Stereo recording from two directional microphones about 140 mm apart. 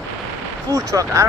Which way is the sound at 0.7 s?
25° right (ahead or behind).